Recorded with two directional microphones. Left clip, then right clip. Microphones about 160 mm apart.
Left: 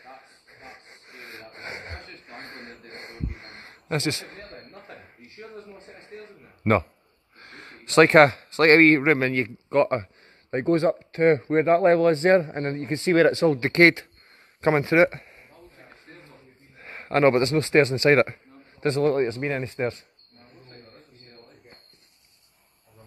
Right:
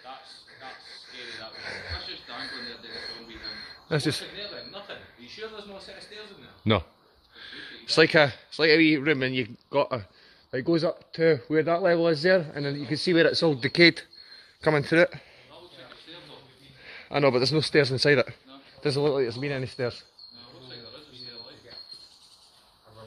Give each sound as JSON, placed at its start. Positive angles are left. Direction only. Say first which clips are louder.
{"t": 0.6, "sound": "wheeze", "louder": "right 2 dB", "side_deg": 30}
{"t": 7.3, "sound": "a sound", "louder": "right 3 dB", "side_deg": 30}
{"t": 7.9, "sound": "speech", "louder": "left 5 dB", "side_deg": 50}
{"t": 16.8, "sound": "a man's voice", "louder": "left 4 dB", "side_deg": 45}